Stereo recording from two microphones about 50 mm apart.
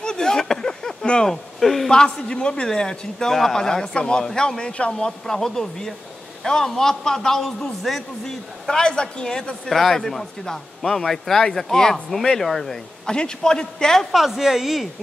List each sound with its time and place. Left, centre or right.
0.0 s a sound: centre
1.3 s speech: centre
1.9 s a man's voice: centre
5.2 s a man's voice: centre
13.0 s a man's voice: centre
14.1 s a woman's voice: centre